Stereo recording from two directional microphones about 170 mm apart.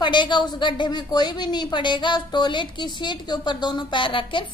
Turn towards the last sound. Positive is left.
turn(degrees=30)  # may be behind; listen again after turning